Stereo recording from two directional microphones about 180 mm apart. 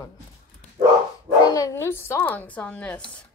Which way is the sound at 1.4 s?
20° left (ahead or behind).